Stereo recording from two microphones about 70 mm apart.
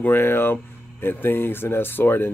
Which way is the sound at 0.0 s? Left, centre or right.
Left.